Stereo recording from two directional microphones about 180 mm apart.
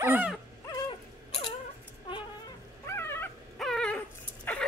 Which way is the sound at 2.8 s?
15° left (ahead or behind).